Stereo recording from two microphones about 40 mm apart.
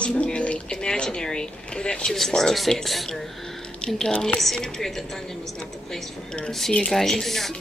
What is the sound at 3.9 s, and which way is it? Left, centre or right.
Speech, centre.